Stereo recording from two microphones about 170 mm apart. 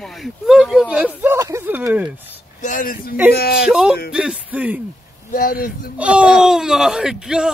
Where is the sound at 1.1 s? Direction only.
15° right (ahead or behind).